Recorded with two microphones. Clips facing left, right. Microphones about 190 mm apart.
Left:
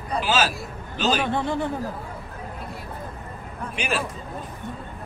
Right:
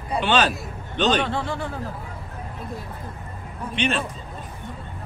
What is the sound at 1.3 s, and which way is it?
Speech, 20° left (ahead or behind).